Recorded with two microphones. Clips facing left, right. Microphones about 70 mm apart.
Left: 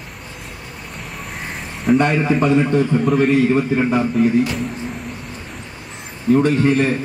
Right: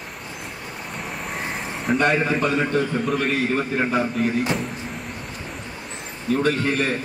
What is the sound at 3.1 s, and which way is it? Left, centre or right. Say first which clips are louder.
Speech: left 9 dB; left.